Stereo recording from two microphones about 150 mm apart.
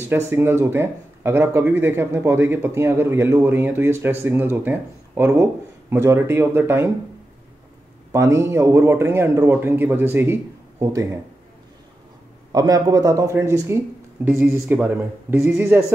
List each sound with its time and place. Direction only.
0.1 s speech: 15° right (ahead or behind)
8.1 s speech: 20° right (ahead or behind)
12.5 s speech: 25° right (ahead or behind)